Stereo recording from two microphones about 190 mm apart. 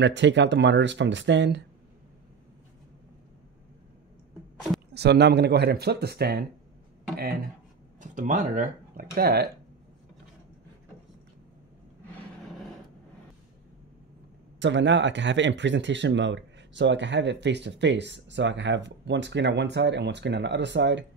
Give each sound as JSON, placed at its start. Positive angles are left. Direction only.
{"t": 0.0, "sound": "speech", "side_deg": -70}
{"t": 4.9, "sound": "speech", "side_deg": -60}
{"t": 8.0, "sound": "speech", "side_deg": -40}
{"t": 9.1, "sound": "speech", "side_deg": -55}
{"t": 14.6, "sound": "speech", "side_deg": -70}